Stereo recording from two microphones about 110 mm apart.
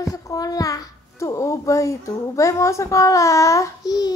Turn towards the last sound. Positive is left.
turn(degrees=35)  # may be behind; listen again after turning